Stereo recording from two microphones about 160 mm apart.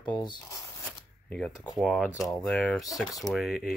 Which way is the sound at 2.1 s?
20° left (ahead or behind).